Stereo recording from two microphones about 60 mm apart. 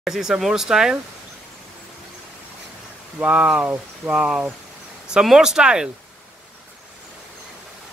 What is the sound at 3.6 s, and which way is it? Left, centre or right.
Speech, right.